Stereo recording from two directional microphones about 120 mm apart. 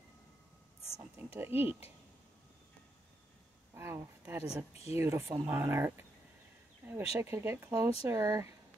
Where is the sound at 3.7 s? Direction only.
20° right (ahead or behind).